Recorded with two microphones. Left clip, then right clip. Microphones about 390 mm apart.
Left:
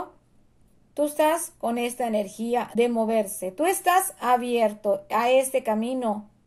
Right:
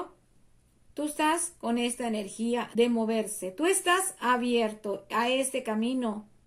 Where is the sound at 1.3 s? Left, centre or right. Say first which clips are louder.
Left 4 dB; left.